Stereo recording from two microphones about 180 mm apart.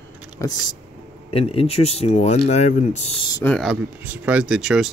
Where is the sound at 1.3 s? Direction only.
30° left (ahead or behind).